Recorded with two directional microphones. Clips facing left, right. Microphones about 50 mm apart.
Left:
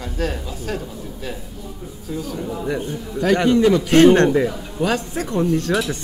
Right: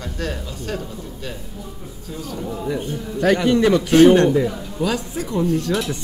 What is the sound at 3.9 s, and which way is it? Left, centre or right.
Speech, left.